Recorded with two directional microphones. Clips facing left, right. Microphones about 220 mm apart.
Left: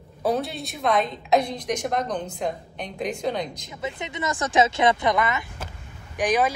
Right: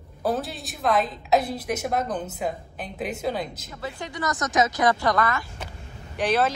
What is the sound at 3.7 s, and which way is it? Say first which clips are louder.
A woman's voice: left 2 dB; 20° left (ahead or behind).